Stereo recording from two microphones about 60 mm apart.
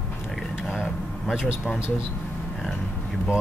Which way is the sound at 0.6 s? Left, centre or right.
Centre.